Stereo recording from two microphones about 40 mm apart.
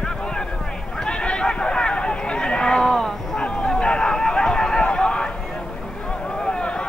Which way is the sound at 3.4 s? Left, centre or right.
Left.